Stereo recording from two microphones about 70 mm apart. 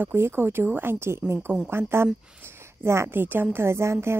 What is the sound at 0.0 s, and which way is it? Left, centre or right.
A woman's voice, right.